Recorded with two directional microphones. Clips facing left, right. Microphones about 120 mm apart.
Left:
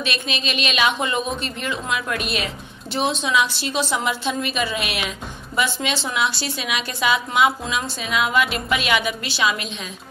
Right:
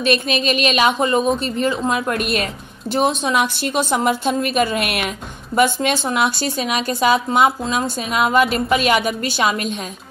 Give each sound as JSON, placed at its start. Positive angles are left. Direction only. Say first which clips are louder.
{"t": 0.0, "sound": "a woman's voice", "louder": "right 8 dB", "side_deg": -45}